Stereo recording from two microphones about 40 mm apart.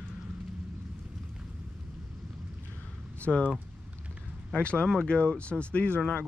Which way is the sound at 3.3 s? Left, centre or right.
Centre.